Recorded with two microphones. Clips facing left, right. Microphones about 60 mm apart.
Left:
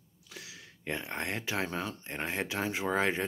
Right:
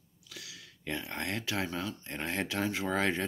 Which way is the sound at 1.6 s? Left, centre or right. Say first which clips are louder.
Left 1 dB; left.